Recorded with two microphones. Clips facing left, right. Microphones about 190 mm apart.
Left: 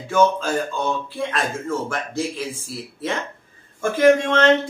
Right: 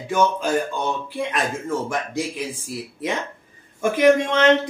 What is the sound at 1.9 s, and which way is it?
Speech, 15° right (ahead or behind).